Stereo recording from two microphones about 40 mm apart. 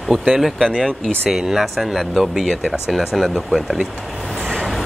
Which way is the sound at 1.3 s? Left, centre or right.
Centre.